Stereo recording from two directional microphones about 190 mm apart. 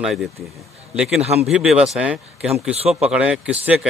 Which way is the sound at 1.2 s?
35° right (ahead or behind).